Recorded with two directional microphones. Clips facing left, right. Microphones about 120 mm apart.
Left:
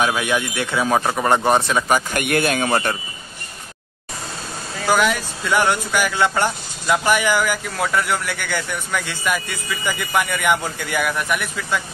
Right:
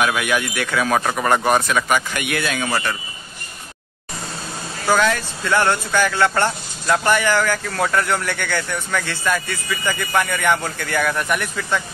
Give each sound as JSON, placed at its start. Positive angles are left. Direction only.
{"t": 0.0, "sound": "speech", "side_deg": 25}
{"t": 2.0, "sound": "a man's voice", "side_deg": 45}
{"t": 4.8, "sound": "speech", "side_deg": 10}